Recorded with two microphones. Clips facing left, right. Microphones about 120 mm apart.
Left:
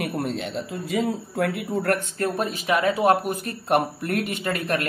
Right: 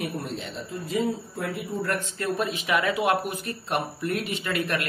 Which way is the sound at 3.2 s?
45° left (ahead or behind).